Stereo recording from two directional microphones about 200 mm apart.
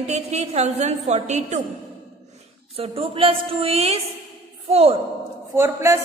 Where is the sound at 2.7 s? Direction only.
30° right (ahead or behind).